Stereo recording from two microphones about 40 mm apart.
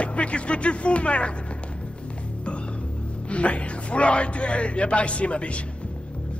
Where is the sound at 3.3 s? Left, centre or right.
Left.